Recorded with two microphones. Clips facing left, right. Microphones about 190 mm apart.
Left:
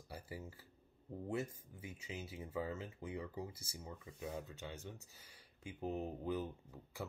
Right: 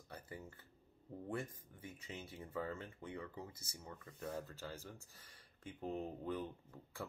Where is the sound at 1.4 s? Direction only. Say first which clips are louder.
Left 3 dB; 25° left (ahead or behind).